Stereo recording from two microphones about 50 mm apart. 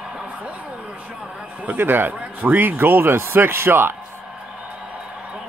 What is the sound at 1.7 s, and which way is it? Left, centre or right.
A man's voice, right.